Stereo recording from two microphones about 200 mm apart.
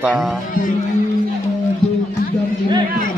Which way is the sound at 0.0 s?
5° right (ahead or behind).